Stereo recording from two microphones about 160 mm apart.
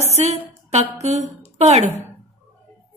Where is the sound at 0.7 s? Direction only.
45° right (ahead or behind).